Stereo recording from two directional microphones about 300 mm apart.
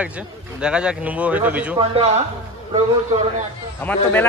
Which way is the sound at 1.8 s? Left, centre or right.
Centre.